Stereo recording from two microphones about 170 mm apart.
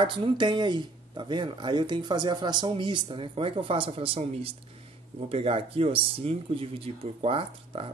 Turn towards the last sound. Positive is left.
turn(degrees=-30)  # may be behind; listen again after turning